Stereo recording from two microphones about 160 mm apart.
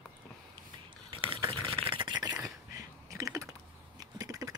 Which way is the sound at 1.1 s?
30° right (ahead or behind).